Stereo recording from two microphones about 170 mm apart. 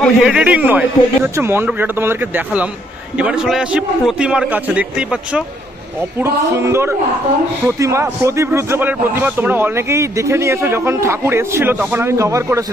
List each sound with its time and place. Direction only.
0.0 s a man's voice: 5° right (ahead or behind)